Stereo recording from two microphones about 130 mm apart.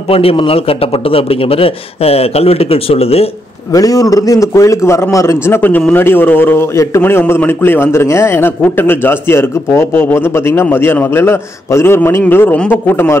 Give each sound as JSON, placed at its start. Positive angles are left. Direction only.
{"t": 0.1, "sound": "a man's voice", "side_deg": 45}
{"t": 3.7, "sound": "a man's voice", "side_deg": 25}